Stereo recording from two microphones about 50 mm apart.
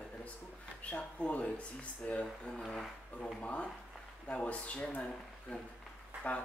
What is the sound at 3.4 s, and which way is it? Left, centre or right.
Speech, left.